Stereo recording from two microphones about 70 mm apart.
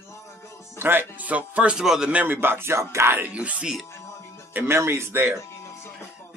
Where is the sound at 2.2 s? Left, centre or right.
Right.